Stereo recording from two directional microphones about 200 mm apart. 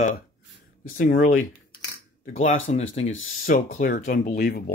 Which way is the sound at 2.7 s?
35° left (ahead or behind).